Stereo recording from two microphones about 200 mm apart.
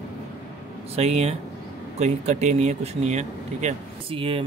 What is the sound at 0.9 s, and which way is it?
Speech, 30° right (ahead or behind).